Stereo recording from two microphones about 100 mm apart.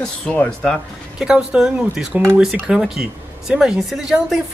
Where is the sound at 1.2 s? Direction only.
10° right (ahead or behind).